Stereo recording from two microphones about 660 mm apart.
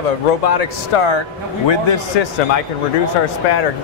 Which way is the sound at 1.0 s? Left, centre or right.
Left.